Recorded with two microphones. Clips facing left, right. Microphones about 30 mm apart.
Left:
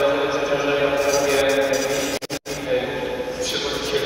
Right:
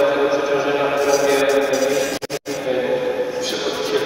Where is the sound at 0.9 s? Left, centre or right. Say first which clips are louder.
Right 2 dB; centre.